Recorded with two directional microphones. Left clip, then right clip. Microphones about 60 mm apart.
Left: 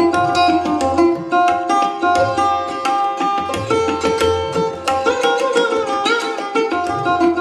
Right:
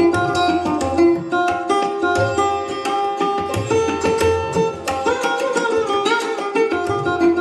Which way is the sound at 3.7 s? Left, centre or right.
Left.